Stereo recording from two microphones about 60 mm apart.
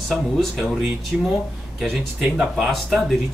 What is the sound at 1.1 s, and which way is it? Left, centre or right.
Speech, right.